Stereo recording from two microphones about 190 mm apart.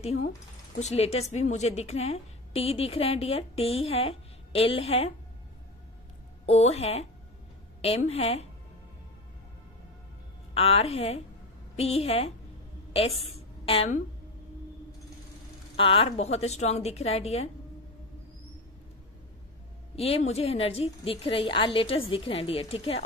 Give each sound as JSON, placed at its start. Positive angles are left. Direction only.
{"t": 0.7, "sound": "a woman's voice", "side_deg": 35}
{"t": 6.4, "sound": "a woman's voice", "side_deg": 35}
{"t": 10.5, "sound": "a woman's voice", "side_deg": 30}
{"t": 15.7, "sound": "a woman's voice", "side_deg": 30}
{"t": 20.0, "sound": "a woman's voice", "side_deg": 30}